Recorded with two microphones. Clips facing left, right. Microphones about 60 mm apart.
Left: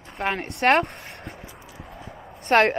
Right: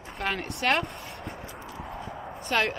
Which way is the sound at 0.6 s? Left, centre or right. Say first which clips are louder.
Left 8 dB; left.